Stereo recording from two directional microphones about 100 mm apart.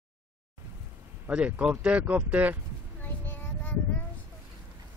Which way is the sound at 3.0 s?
20° left (ahead or behind).